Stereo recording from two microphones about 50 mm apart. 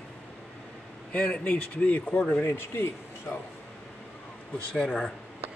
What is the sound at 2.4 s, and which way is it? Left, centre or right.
Speech, left.